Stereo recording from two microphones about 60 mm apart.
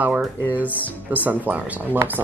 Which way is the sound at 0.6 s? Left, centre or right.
Left.